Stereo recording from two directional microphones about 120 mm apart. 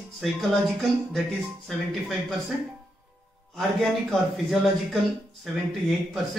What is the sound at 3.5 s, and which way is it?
Speech, centre (ahead or behind).